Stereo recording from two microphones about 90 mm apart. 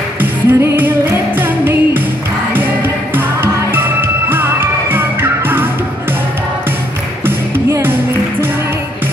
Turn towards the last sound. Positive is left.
turn(degrees=-25)  # may be behind; listen again after turning